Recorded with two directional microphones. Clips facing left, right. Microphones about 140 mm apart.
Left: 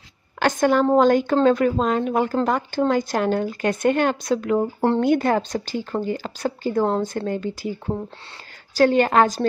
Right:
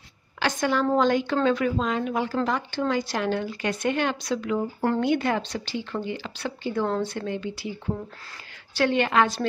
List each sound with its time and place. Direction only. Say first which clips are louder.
0.4 s a woman's voice: left 6 dB; 50° left (ahead or behind)